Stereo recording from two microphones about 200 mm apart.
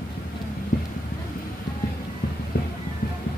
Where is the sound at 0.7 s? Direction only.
45° left (ahead or behind).